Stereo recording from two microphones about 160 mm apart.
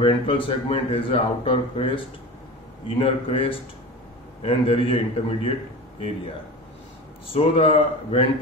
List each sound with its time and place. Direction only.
0.0 s a man's voice: 30° left (ahead or behind)
7.3 s a man's voice: 40° left (ahead or behind)